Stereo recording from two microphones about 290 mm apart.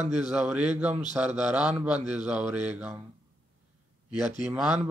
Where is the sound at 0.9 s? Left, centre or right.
Right.